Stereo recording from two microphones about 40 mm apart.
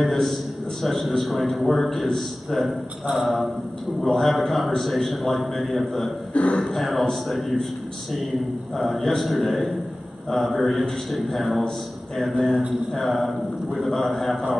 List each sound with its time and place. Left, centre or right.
0.0 s a man's voice: centre
6.3 s a man's voice: left
6.6 s a man's voice: centre
8.7 s a man's voice: centre